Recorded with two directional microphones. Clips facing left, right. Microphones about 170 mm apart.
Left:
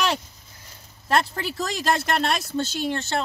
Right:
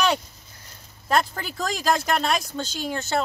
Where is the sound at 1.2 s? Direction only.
5° left (ahead or behind).